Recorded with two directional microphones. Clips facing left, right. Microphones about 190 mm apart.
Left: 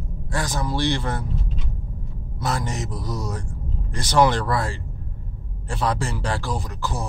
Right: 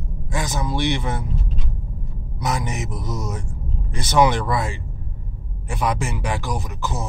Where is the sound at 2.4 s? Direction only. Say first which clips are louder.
Right 1 dB; 15° right (ahead or behind).